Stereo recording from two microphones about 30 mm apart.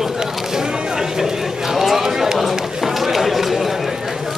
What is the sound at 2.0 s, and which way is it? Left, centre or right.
Run, centre.